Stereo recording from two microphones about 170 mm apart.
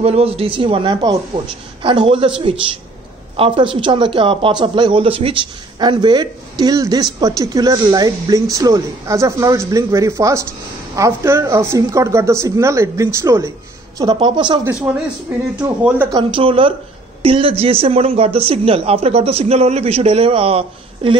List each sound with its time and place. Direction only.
0.0 s a man's voice: 35° right (ahead or behind); by 13.5 s 15° right (ahead or behind)
13.9 s speech: 25° right (ahead or behind)
14.6 s speech: 10° right (ahead or behind)
16.1 s a man's voice: 25° right (ahead or behind)